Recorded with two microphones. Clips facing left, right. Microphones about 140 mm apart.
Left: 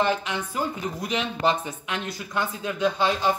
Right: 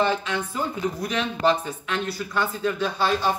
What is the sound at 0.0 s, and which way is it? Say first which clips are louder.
Speech: right 1 dB; 15° left (ahead or behind).